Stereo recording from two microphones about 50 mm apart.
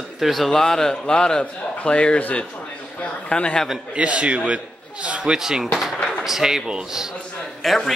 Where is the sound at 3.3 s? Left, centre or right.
Centre.